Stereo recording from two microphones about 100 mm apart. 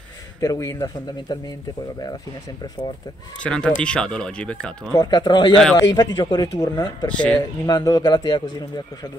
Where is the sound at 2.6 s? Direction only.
50° left (ahead or behind).